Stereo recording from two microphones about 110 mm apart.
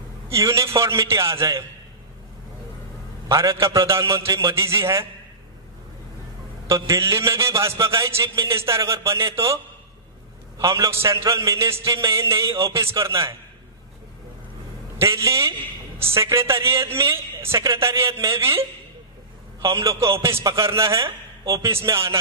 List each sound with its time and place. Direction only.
0.3 s a man's voice: 25° right (ahead or behind)
3.3 s a man's voice: 30° right (ahead or behind)
6.7 s a man's voice: 25° right (ahead or behind)
10.6 s a man's voice: 25° right (ahead or behind)
15.0 s a man's voice: 25° right (ahead or behind)